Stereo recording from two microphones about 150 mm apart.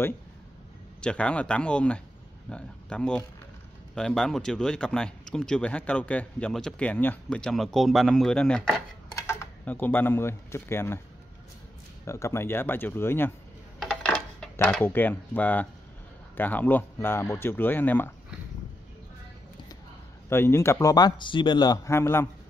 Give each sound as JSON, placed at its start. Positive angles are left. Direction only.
{"t": 1.0, "sound": "speech", "side_deg": 5}
{"t": 9.1, "sound": "speech", "side_deg": 20}
{"t": 12.0, "sound": "speech", "side_deg": 20}
{"t": 13.7, "sound": "coin", "side_deg": 5}
{"t": 16.3, "sound": "speech", "side_deg": 10}
{"t": 20.2, "sound": "speech", "side_deg": 15}